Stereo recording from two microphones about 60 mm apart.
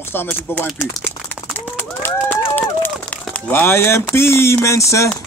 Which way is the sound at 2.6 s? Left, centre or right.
Left.